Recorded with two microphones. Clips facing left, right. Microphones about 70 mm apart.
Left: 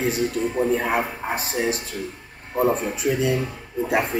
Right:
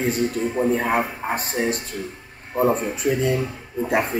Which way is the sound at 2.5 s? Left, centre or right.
Centre.